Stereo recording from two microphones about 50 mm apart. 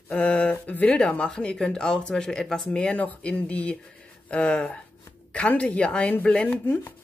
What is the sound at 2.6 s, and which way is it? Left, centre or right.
Speech, left.